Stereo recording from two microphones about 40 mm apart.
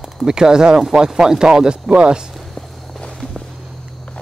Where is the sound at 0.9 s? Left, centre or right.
Centre.